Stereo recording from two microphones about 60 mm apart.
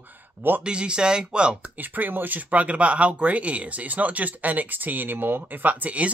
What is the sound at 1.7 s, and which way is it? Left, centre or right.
Speech, right.